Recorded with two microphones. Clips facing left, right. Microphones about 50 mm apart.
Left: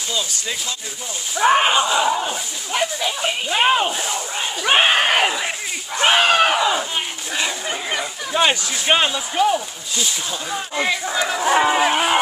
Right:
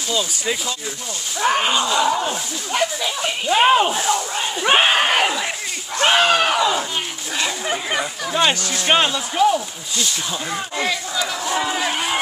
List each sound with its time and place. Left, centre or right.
1.4 s speech: centre
2.1 s speech: centre
7.6 s speech: centre
8.4 s speech: centre
11.1 s speech: left
11.8 s speech: centre